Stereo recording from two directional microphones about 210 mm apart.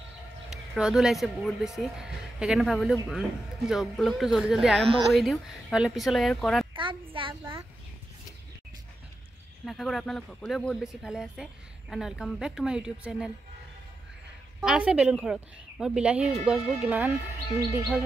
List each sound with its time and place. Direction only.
0.7 s speech: 5° right (ahead or behind)
6.7 s a sound: 25° right (ahead or behind)
9.7 s speech: centre (ahead or behind)
14.6 s speech: 5° right (ahead or behind)